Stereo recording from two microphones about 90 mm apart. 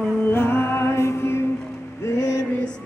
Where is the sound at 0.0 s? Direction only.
20° left (ahead or behind).